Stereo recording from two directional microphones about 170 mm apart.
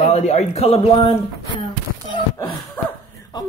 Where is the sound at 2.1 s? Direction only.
30° left (ahead or behind).